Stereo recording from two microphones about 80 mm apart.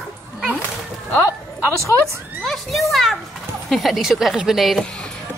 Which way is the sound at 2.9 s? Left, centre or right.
Centre.